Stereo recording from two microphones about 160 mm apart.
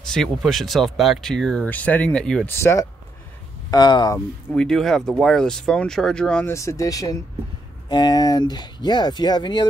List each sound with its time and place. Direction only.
0.0 s a sound: 5° left (ahead or behind)
0.5 s speech: centre (ahead or behind)
2.5 s speech: 15° left (ahead or behind)
4.6 s speech: 5° left (ahead or behind)
6.5 s speech: 20° left (ahead or behind)